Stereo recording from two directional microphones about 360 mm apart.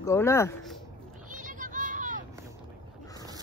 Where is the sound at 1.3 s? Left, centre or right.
Right.